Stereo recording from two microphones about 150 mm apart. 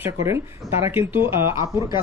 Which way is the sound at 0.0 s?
20° right (ahead or behind).